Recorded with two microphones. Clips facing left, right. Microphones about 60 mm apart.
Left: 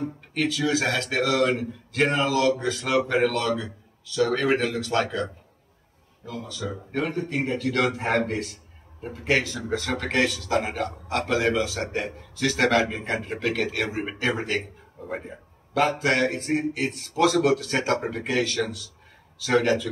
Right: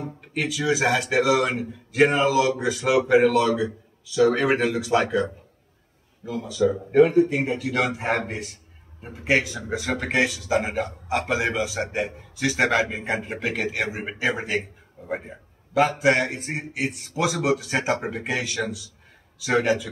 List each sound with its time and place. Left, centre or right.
0.0 s speech: centre